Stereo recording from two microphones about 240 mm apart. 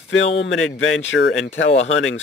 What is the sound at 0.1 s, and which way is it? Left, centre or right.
Speech, left.